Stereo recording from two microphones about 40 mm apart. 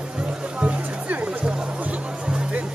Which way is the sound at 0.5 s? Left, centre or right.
Right.